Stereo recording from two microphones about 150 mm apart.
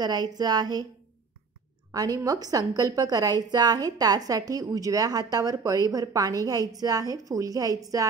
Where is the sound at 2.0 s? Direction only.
25° right (ahead or behind).